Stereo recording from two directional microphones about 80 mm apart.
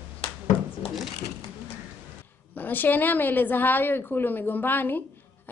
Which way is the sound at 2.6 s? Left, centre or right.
Left.